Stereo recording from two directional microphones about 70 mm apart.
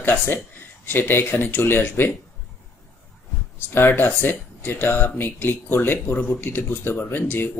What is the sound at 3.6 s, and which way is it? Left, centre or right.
Speech, left.